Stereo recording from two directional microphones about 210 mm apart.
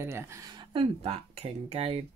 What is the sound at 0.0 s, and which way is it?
Speech, 10° right (ahead or behind).